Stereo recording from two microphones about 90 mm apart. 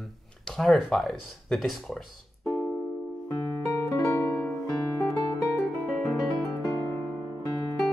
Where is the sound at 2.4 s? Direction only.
25° left (ahead or behind).